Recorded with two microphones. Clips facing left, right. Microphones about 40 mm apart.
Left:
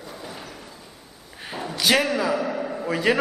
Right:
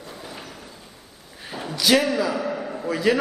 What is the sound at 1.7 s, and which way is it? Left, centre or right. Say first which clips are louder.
Speech: right 1 dB; centre.